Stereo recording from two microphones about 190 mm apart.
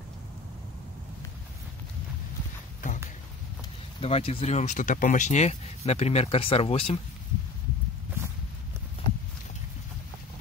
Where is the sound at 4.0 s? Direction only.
30° left (ahead or behind).